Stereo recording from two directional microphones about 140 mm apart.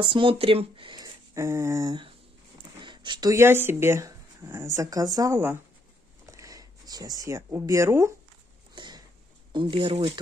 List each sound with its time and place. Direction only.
0.0 s speech: 35° right (ahead or behind); by 8.1 s 20° right (ahead or behind)
8.7 s a sound: 30° right (ahead or behind)
9.5 s speech: 35° right (ahead or behind)